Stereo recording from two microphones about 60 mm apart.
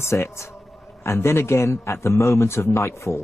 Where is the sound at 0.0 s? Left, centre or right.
Left.